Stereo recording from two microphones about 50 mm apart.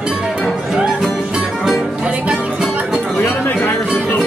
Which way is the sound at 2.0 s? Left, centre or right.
Right.